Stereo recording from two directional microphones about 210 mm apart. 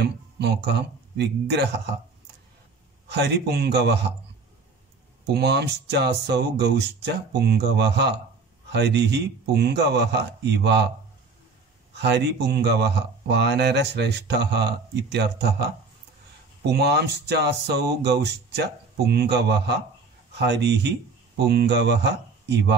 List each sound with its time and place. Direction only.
0.0 s speech: 50° right (ahead or behind)
3.1 s speech: 55° right (ahead or behind)
5.3 s speech: 50° right (ahead or behind)
11.9 s speech: 55° right (ahead or behind)
16.7 s speech: 50° right (ahead or behind)